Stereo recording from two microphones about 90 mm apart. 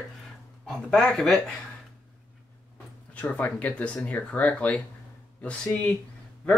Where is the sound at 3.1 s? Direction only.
15° left (ahead or behind).